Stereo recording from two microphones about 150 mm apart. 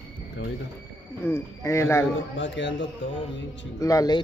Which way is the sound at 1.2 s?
15° left (ahead or behind).